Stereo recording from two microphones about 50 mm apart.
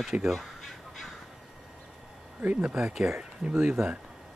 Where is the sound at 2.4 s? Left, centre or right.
Right.